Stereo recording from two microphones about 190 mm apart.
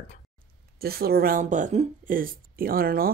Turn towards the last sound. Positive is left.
turn(degrees=-50)  # may be behind; listen again after turning